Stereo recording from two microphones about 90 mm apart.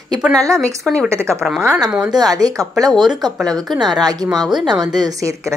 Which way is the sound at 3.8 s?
50° right (ahead or behind).